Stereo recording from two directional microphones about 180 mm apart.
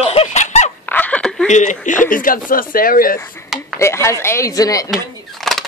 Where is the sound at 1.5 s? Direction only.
40° left (ahead or behind).